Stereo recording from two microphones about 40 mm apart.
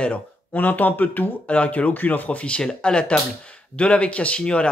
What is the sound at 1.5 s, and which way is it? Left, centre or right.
Speech, left.